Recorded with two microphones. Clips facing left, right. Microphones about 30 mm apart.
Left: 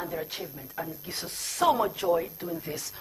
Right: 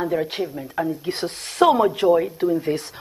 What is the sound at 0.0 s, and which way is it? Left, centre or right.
Speech, right.